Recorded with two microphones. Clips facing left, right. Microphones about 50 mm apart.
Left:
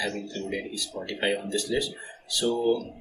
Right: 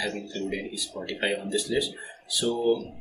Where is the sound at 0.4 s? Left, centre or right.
Centre.